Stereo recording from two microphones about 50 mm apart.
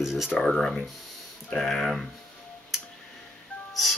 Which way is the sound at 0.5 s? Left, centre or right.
Centre.